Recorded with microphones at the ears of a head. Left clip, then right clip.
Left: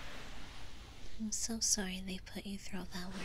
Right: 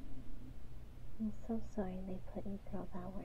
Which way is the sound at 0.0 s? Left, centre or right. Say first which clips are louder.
Left 9 dB; left.